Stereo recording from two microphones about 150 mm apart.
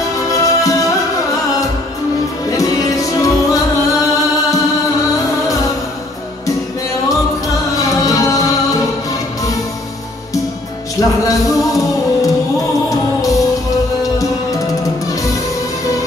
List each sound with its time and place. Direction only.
0.3 s music: 20° left (ahead or behind)
2.5 s music: 25° left (ahead or behind)
8.0 s music: 25° left (ahead or behind)
11.0 s music: 20° left (ahead or behind)